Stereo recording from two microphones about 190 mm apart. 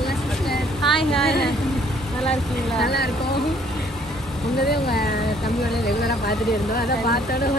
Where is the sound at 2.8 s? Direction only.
55° left (ahead or behind).